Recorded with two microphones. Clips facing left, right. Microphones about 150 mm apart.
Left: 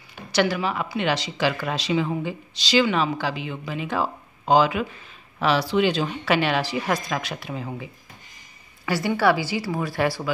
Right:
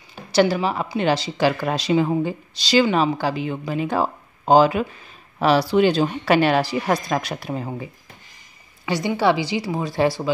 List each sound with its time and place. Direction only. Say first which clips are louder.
0.1 s a woman's voice: right 4 dB; 35° right (ahead or behind)
8.8 s a woman's voice: right 1 dB; 20° right (ahead or behind)